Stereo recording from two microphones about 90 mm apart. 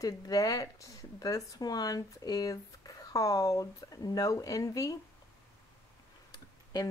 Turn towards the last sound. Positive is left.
turn(degrees=45)  # may be behind; listen again after turning